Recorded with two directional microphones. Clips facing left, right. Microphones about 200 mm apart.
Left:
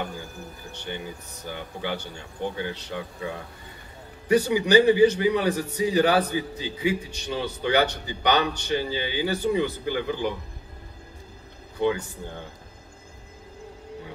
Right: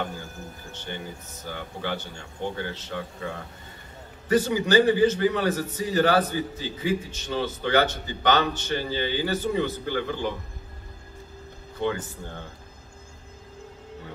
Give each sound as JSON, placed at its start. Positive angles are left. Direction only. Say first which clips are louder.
{"t": 0.7, "sound": "a man's voice", "louder": "left 2 dB", "side_deg": 15}
{"t": 11.8, "sound": "a man's voice", "louder": "left 3 dB", "side_deg": 15}